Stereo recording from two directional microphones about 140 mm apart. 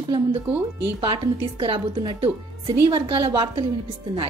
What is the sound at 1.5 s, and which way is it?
Speech, 40° right (ahead or behind).